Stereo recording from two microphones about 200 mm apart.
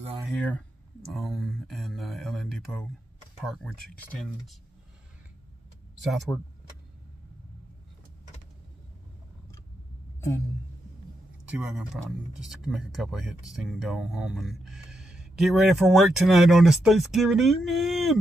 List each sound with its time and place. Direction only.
0.3 s speech: 5° left (ahead or behind)
6.0 s speech: centre (ahead or behind)
11.4 s speech: 5° right (ahead or behind)